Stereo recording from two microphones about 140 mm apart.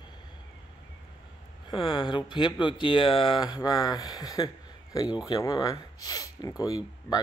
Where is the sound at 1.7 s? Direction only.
35° left (ahead or behind).